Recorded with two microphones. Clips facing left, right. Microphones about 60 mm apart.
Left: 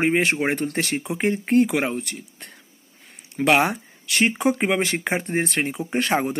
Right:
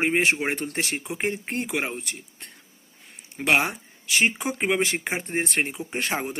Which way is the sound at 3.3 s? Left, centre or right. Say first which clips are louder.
Left 4 dB; left.